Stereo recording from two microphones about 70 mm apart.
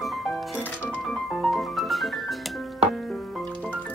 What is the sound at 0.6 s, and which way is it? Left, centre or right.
Music, centre.